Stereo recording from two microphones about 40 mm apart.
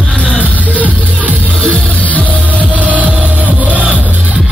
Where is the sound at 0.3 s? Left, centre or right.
Left.